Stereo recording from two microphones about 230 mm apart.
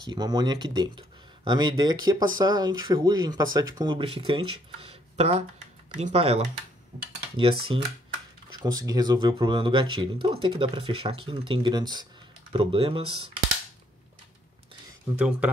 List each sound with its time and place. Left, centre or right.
0.0 s speech: centre
15.1 s speech: centre